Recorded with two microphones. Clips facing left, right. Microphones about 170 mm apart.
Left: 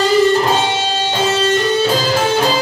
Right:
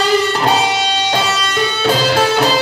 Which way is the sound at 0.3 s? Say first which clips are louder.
Left 1 dB; 75° right (ahead or behind).